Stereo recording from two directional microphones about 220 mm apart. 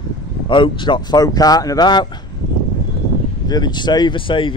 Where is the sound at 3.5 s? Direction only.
20° left (ahead or behind).